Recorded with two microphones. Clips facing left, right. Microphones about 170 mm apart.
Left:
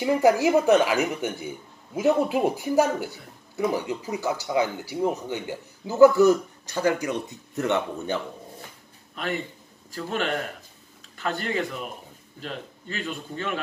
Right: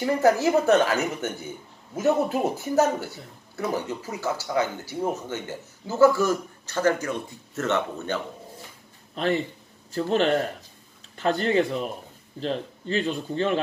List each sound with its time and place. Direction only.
0.0 s a man's voice: 15° left (ahead or behind)
9.1 s a man's voice: 35° right (ahead or behind)